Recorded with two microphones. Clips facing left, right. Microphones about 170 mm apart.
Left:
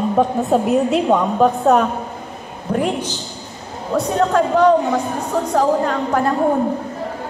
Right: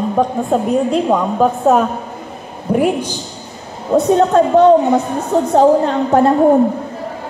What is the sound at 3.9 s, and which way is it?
A woman's voice, 25° right (ahead or behind).